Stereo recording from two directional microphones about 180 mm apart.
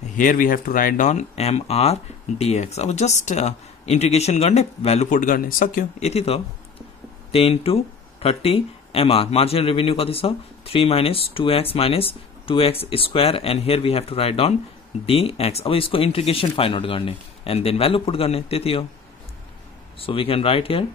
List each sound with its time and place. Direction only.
0.1 s speech: 50° left (ahead or behind)
5.9 s speech: 35° left (ahead or behind)
20.0 s speech: 30° left (ahead or behind)